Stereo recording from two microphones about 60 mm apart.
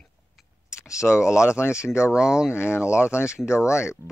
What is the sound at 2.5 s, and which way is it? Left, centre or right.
Speech, left.